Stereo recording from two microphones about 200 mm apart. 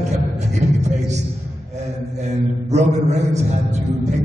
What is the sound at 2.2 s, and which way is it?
A man's voice, 35° right (ahead or behind).